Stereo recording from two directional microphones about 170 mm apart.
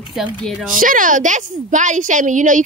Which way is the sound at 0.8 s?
50° right (ahead or behind).